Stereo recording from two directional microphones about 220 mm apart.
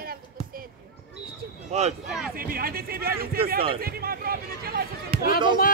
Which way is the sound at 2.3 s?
40° right (ahead or behind).